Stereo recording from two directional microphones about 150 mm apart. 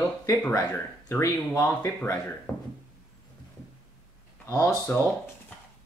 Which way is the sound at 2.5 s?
Centre (ahead or behind).